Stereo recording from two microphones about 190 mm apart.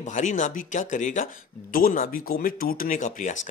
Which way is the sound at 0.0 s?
40° left (ahead or behind).